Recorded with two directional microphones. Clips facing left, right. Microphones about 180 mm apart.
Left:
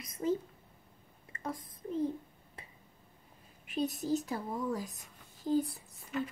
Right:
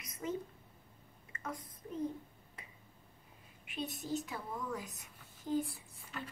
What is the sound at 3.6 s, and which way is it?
Speech, 40° left (ahead or behind).